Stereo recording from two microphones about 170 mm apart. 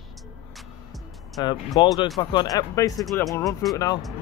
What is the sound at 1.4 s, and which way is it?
Speech, 25° left (ahead or behind).